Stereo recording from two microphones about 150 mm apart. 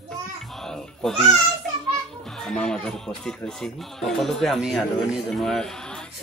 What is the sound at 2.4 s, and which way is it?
Music, 5° left (ahead or behind).